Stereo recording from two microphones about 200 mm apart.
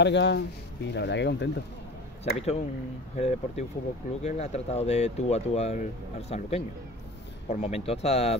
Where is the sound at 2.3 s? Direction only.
30° left (ahead or behind).